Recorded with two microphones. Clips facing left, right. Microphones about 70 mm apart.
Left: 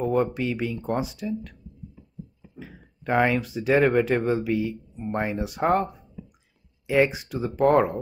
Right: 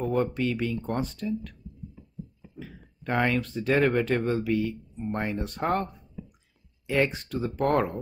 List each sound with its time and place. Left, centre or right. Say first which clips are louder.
0.0 s a sound: left 3 dB; centre
0.3 s speech: even; centre
2.6 s speech: left 3 dB; centre